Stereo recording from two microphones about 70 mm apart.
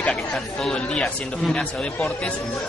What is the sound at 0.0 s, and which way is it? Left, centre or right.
Chatter, centre.